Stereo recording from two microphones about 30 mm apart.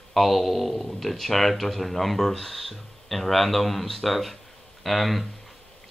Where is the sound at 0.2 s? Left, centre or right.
Centre.